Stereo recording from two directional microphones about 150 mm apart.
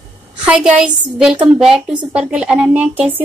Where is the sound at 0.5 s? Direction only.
5° right (ahead or behind).